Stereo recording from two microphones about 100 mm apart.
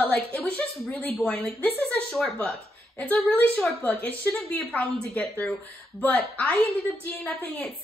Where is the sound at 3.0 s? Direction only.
15° left (ahead or behind).